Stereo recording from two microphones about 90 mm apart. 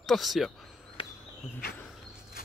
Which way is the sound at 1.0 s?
90° left.